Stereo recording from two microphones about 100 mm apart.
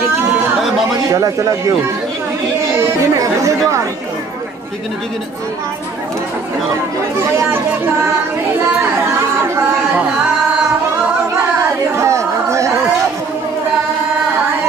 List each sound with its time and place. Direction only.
1.1 s speech: 30° right (ahead or behind)
2.8 s speech: 30° right (ahead or behind)
7.3 s speech: 25° right (ahead or behind)
12.0 s a sound: 30° right (ahead or behind)